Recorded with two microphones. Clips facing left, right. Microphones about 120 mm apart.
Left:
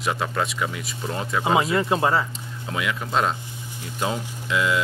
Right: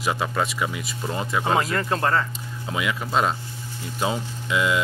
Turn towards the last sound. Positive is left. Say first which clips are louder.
# even
turn(degrees=-5)  # may be behind; listen again after turning